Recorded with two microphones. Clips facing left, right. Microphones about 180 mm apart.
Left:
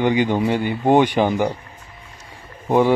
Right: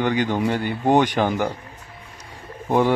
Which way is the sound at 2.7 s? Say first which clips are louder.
Left 3 dB; 10° left (ahead or behind).